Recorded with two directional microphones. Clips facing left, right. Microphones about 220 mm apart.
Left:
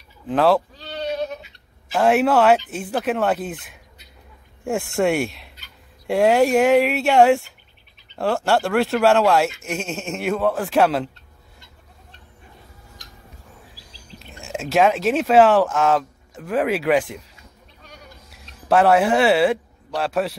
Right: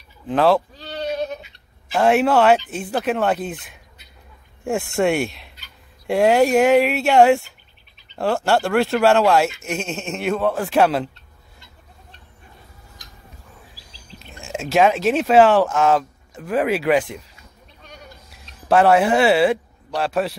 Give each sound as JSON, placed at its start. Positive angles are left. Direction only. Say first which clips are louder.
{"t": 0.3, "sound": "speech", "louder": "right 1 dB", "side_deg": 0}
{"t": 2.0, "sound": "speech", "louder": "right 1 dB", "side_deg": 5}
{"t": 14.1, "sound": "a sound", "louder": "even", "side_deg": 50}
{"t": 14.4, "sound": "speech", "louder": "right 1 dB", "side_deg": 0}
{"t": 18.7, "sound": "speech", "louder": "right 1 dB", "side_deg": 0}